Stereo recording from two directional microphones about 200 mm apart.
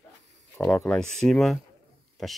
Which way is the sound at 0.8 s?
5° left (ahead or behind).